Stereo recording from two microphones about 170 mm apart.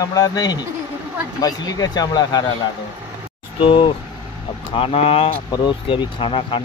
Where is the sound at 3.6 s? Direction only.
30° left (ahead or behind).